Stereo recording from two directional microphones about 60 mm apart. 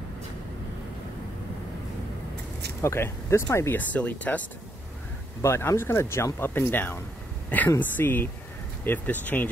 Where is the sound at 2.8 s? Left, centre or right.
Left.